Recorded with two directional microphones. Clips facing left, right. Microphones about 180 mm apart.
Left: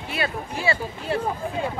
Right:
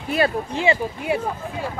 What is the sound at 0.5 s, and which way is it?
Speech, 20° right (ahead or behind).